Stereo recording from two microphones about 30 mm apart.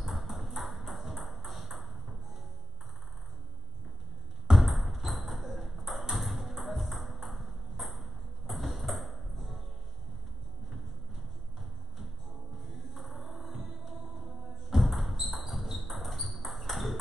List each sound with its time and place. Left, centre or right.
0.1 s ping: centre
4.6 s ping: centre
12.7 s music: centre
13.6 s music: centre
14.2 s a sound: centre